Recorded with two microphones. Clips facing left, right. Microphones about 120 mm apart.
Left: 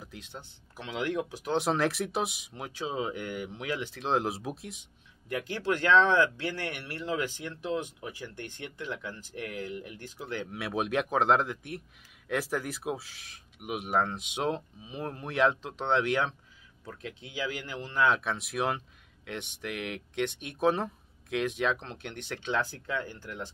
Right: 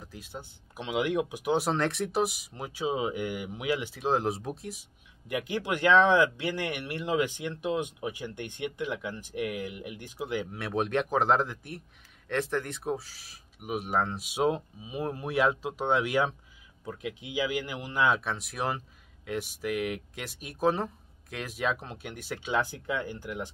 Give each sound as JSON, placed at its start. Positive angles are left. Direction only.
{"t": 0.0, "sound": "speech", "side_deg": -5}
{"t": 1.6, "sound": "speech", "side_deg": 0}
{"t": 5.3, "sound": "speech", "side_deg": -15}
{"t": 10.5, "sound": "speech", "side_deg": 0}